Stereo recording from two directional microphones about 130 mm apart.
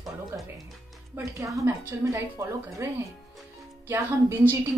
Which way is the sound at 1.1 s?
25° right (ahead or behind).